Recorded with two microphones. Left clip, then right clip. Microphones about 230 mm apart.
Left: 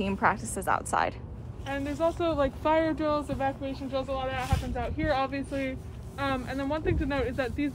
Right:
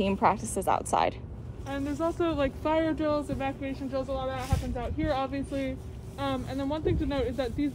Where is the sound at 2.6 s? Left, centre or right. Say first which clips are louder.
Left 1 dB; centre.